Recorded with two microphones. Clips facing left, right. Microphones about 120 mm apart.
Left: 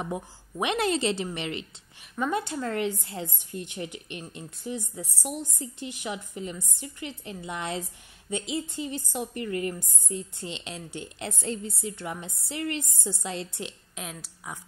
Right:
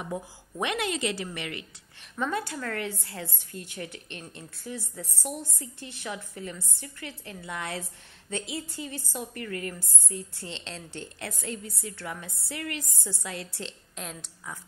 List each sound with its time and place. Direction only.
0.1 s a woman's voice: 15° left (ahead or behind)
0.7 s a woman's voice: 35° left (ahead or behind); by 13.7 s 15° left (ahead or behind)
13.9 s a woman's voice: 5° left (ahead or behind)